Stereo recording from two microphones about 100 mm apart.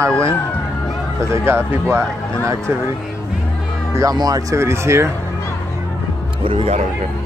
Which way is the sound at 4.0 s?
35° right (ahead or behind).